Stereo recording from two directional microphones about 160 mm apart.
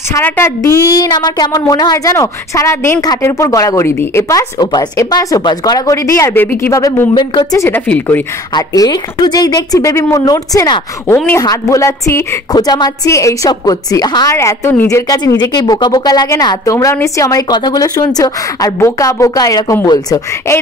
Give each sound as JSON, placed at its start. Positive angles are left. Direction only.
{"t": 0.1, "sound": "a woman's voice", "side_deg": 15}
{"t": 8.5, "sound": "a woman's voice", "side_deg": 25}